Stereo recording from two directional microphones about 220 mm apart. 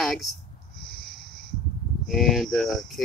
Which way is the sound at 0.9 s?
Centre (ahead or behind).